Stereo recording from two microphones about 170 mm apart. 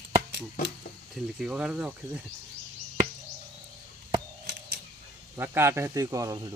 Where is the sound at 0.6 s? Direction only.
50° left (ahead or behind).